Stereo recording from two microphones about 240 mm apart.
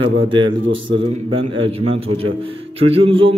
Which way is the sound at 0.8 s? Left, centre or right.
Right.